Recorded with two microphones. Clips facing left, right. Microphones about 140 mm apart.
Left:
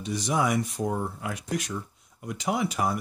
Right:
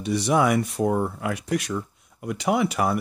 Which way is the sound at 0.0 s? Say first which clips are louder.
Right 6 dB; 65° right (ahead or behind).